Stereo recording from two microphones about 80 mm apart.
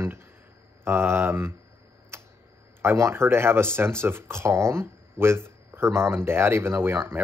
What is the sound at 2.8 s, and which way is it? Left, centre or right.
Speech, right.